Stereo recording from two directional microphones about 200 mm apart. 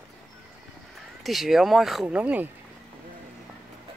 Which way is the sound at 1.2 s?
Centre (ahead or behind).